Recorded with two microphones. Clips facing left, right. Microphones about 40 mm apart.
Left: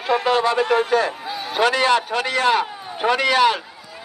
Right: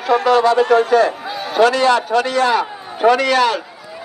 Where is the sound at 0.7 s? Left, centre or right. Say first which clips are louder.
Right 5 dB; right.